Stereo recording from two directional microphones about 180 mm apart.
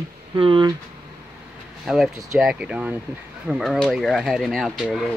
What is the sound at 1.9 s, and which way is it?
Speech, centre (ahead or behind).